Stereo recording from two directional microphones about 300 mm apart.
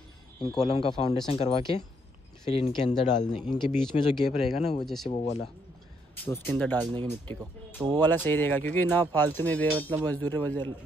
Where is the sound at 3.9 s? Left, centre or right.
Left.